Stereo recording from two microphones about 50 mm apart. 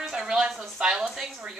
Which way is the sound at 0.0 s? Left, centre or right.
Centre.